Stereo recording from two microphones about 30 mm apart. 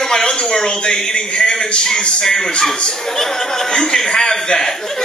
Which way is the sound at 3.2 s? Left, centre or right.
Centre.